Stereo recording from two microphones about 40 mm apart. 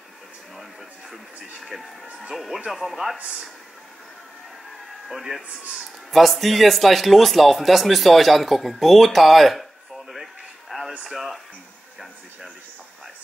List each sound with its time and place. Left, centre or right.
1.1 s television: centre
2.3 s speech: centre
5.0 s a man's voice: centre